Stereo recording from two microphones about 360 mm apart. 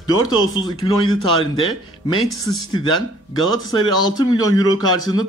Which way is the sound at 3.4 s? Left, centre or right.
Left.